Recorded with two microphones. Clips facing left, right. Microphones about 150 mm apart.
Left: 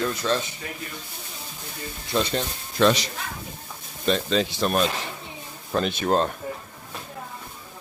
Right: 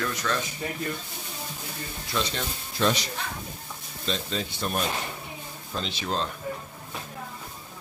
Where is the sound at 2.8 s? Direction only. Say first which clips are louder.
Left 6 dB; 80° left.